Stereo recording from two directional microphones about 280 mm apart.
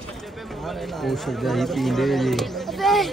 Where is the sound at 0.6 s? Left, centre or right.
Centre.